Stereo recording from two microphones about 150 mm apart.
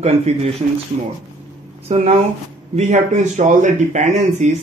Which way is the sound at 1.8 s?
45° right (ahead or behind).